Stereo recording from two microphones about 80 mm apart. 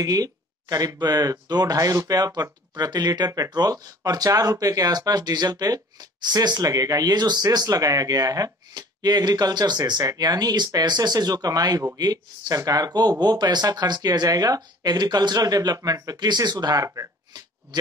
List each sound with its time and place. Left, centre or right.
0.0 s speech: right